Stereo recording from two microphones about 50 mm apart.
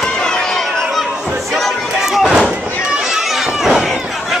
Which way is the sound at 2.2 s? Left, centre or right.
Centre.